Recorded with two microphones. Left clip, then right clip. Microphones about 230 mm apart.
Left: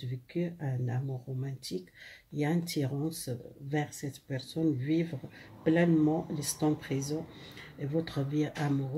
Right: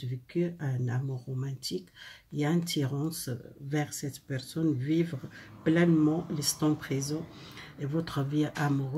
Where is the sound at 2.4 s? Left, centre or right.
Centre.